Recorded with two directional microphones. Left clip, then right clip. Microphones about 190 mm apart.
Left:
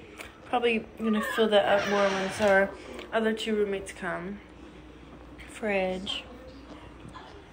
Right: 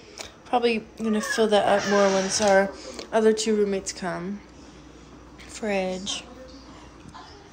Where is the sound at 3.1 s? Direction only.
30° right (ahead or behind).